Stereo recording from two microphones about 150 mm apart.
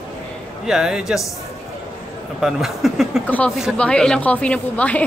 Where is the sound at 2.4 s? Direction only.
5° right (ahead or behind).